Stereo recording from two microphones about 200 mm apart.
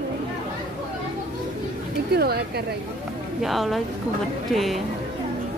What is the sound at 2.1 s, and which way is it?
Speech, 50° right (ahead or behind).